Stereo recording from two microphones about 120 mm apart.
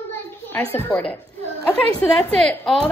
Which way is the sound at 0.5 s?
15° left (ahead or behind).